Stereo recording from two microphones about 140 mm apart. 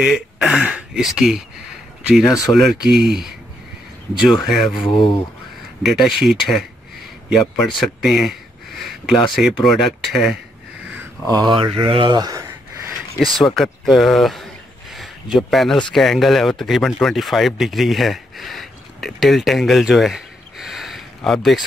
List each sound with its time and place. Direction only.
0.0 s speech: 5° right (ahead or behind)
5.8 s a man's voice: centre (ahead or behind)
11.3 s mantra: 30° right (ahead or behind)
13.6 s speech: centre (ahead or behind)